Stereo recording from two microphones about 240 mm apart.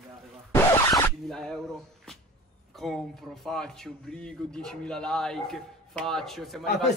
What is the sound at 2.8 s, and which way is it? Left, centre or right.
A man's voice, centre.